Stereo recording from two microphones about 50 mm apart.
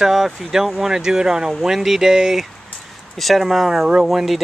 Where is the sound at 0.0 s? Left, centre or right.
Centre.